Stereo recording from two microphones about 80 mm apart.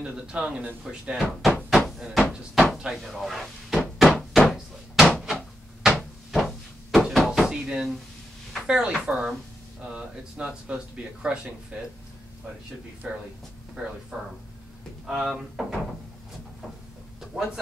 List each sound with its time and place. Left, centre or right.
0.0 s speech: centre
2.0 s a sound: centre
8.6 s speech: centre
13.0 s speech: centre
15.0 s speech: centre
17.2 s a sound: centre